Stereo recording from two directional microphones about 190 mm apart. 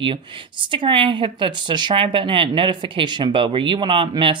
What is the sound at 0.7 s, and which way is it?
Speech, 25° right (ahead or behind).